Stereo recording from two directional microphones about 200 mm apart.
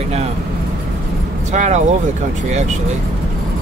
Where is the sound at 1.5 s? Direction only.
35° right (ahead or behind).